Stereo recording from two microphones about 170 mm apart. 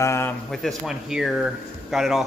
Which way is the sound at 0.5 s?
Centre (ahead or behind).